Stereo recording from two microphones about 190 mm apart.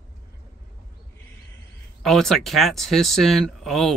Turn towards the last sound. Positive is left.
turn(degrees=0)  # may be behind; listen again after turning